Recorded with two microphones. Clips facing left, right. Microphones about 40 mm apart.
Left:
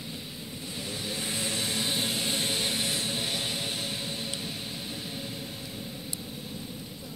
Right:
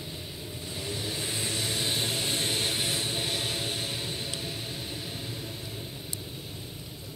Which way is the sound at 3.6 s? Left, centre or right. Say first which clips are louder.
Even; centre.